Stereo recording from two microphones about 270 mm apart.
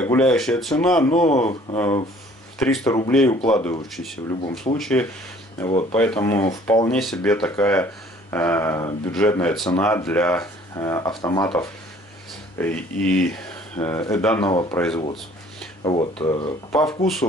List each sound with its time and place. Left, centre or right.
0.0 s speech: centre
1.1 s speech: left
2.6 s speech: centre
3.9 s speech: centre
4.3 s speech: centre
4.7 s speech: centre
5.7 s speech: left
5.9 s speech: centre
15.8 s speech: centre
16.7 s speech: centre